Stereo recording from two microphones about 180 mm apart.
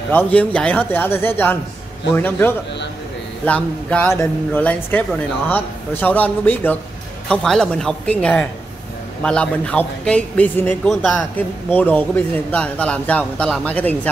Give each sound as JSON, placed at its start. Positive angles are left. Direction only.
{"t": 0.1, "sound": "speech", "side_deg": 10}
{"t": 10.9, "sound": "speech", "side_deg": 0}
{"t": 11.3, "sound": "speech", "side_deg": 10}